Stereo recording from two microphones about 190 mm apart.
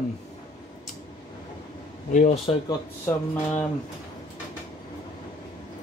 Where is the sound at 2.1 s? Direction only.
35° left (ahead or behind).